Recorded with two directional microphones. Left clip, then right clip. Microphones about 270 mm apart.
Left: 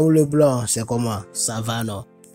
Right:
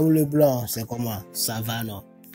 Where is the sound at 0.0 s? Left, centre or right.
Centre.